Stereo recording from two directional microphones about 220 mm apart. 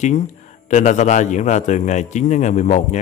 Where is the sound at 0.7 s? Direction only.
35° left (ahead or behind).